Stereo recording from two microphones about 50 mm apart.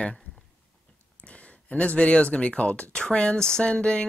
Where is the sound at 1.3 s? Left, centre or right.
Left.